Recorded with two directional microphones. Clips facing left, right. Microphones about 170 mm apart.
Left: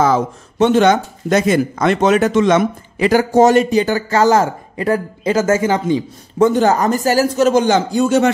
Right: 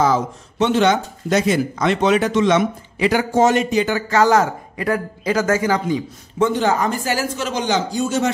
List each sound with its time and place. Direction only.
0.0 s speech: 50° left (ahead or behind); by 6.0 s 25° left (ahead or behind)
6.3 s speech: 45° left (ahead or behind); by 8.3 s 60° left (ahead or behind)